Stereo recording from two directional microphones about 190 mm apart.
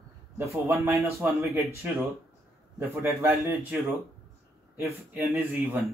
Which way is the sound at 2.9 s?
15° right (ahead or behind).